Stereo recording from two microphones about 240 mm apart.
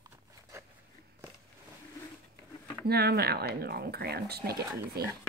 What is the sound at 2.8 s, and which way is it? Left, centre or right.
Speech, right.